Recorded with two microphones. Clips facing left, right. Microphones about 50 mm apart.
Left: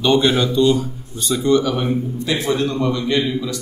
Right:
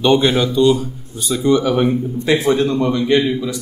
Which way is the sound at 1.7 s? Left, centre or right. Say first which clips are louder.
Right 4 dB; right.